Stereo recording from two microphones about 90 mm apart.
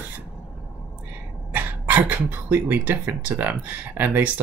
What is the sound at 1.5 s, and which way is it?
Speech, 20° right (ahead or behind).